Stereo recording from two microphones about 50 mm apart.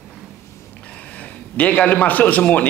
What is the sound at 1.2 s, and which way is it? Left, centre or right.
A man's voice, left.